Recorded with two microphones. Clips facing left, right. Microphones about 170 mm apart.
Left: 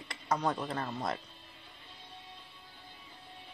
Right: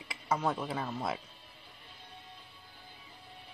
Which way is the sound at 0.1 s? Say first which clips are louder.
Even; 5° right (ahead or behind).